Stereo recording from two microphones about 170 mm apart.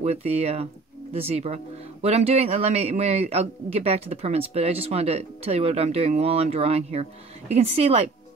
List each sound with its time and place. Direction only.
0.0 s speech: 40° right (ahead or behind)